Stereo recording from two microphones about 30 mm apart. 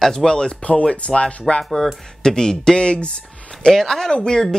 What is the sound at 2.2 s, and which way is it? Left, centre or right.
Speech, left.